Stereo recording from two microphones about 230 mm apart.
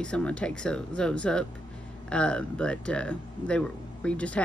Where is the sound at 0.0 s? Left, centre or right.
Centre.